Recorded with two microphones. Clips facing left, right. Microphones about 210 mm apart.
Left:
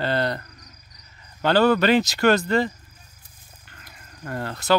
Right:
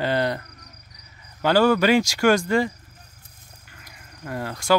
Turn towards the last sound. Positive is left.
turn(degrees=-10)  # may be behind; listen again after turning